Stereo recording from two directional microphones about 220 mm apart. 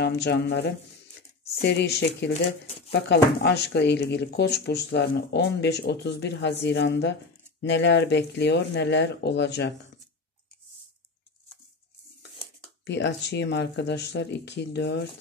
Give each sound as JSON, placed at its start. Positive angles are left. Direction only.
{"t": 0.0, "sound": "speech", "side_deg": 50}
{"t": 12.8, "sound": "speech", "side_deg": 50}